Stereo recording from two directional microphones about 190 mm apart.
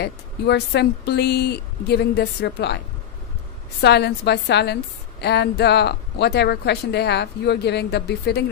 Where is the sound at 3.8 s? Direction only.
60° left (ahead or behind).